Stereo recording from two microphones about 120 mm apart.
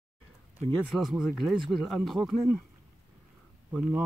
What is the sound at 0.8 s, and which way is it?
Speech, centre (ahead or behind).